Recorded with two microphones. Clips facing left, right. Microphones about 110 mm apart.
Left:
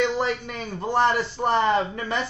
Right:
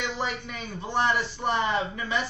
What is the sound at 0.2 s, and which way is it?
A man's voice, 45° left (ahead or behind).